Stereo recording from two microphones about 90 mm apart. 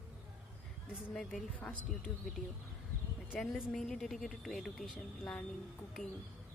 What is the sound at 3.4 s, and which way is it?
A woman's voice, 5° left (ahead or behind).